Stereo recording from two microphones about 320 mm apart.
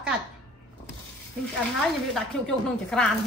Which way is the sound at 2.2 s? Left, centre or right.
Centre.